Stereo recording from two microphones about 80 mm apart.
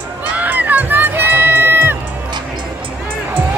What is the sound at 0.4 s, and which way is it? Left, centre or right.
Music, right.